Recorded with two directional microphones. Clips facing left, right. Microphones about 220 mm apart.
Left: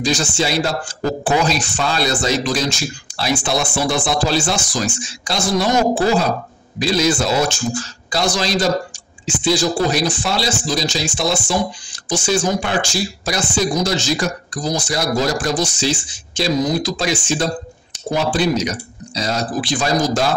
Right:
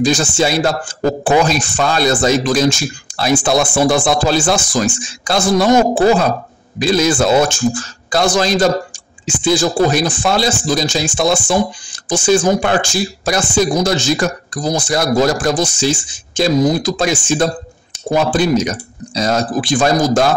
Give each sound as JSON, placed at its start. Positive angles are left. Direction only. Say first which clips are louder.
{"t": 0.0, "sound": "speech", "louder": "right 5 dB", "side_deg": -50}